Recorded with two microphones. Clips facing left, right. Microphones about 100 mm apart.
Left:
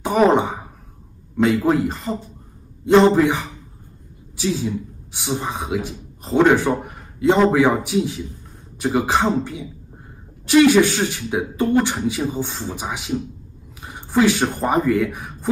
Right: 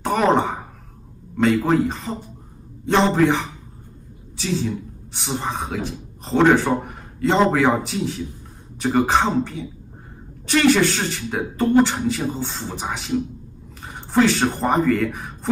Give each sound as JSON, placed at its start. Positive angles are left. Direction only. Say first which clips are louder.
{"t": 0.0, "sound": "a man's voice", "louder": "left 2 dB", "side_deg": 10}
{"t": 4.4, "sound": "a man's voice", "louder": "left 1 dB", "side_deg": 5}
{"t": 7.8, "sound": "speech", "louder": "left 4 dB", "side_deg": 10}